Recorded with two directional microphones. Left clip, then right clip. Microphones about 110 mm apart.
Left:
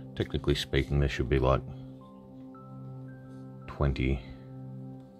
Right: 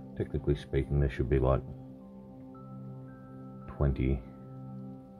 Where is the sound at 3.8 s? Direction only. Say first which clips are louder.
Left 2 dB; 15° left (ahead or behind).